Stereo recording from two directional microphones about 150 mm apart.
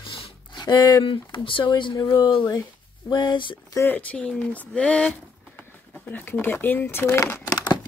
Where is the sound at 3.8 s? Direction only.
10° left (ahead or behind).